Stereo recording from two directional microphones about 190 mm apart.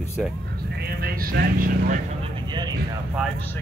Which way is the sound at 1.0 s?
50° right (ahead or behind).